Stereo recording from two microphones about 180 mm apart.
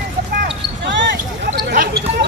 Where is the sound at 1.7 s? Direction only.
60° right (ahead or behind).